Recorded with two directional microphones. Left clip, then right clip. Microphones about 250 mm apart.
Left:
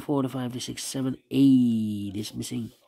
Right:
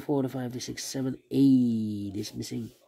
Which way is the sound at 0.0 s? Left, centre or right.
Centre.